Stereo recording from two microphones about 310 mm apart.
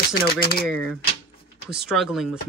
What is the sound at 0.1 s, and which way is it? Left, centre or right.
Speech, left.